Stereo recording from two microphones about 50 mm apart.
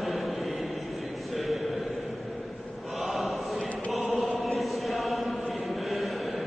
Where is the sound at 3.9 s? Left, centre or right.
Centre.